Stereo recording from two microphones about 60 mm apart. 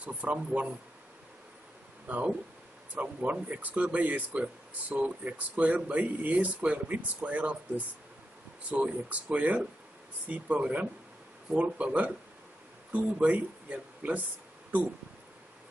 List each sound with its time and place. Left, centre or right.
0.0 s speech: right
2.0 s speech: right